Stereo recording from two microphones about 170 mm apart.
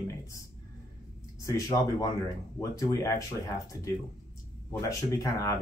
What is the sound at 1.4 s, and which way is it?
Speech, 20° left (ahead or behind).